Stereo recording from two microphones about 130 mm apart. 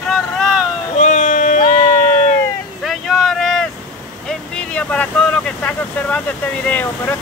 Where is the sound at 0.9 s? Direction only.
70° left (ahead or behind).